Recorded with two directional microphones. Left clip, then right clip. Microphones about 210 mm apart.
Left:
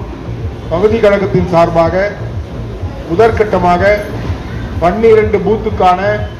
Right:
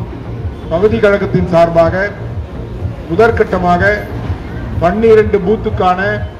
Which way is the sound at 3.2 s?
55° right (ahead or behind).